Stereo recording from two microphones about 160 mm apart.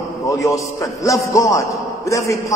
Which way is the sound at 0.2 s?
20° left (ahead or behind).